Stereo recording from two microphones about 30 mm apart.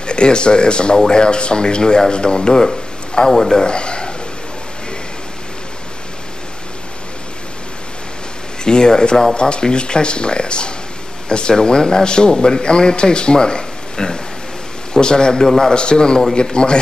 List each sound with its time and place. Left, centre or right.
0.0 s a man's voice: left; by 3.6 s centre
3.6 s a sound: left
8.6 s a man's voice: left
15.4 s a man's voice: centre
15.7 s speech: left